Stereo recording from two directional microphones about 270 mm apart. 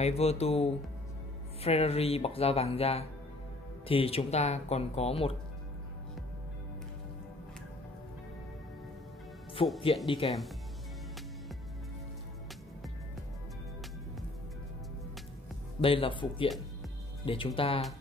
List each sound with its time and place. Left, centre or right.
0.0 s speech: left
9.6 s speech: centre
15.8 s speech: centre